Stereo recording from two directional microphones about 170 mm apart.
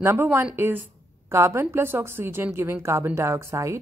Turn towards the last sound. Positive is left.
turn(degrees=-15)  # may be behind; listen again after turning